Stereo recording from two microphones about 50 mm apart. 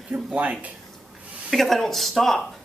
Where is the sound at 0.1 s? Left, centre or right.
Right.